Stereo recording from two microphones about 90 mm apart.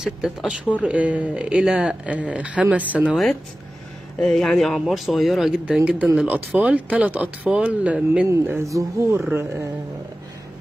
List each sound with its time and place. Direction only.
0.0 s speech: 5° right (ahead or behind)
4.2 s speech: 5° left (ahead or behind)
6.2 s speech: 15° right (ahead or behind)
8.5 s speech: 35° right (ahead or behind)